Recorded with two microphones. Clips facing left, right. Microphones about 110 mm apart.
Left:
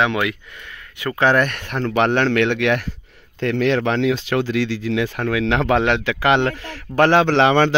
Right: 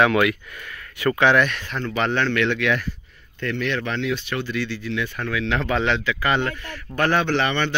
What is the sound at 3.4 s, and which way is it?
Speech, 90° left.